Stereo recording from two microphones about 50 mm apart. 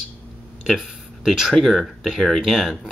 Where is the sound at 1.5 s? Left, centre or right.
Centre.